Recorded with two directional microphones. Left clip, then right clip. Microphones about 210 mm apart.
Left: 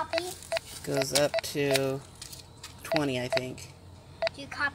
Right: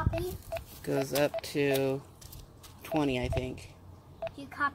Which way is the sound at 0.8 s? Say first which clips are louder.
Left 2 dB; 20° right (ahead or behind).